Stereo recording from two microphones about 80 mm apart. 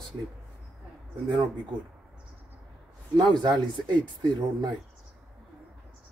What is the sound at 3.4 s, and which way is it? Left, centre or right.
Speech, right.